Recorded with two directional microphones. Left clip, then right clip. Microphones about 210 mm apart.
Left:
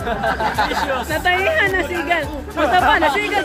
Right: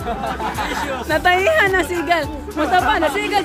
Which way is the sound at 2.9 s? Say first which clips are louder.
Left 2 dB; 20° right (ahead or behind).